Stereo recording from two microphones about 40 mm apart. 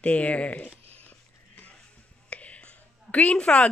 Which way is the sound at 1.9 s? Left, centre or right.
Left.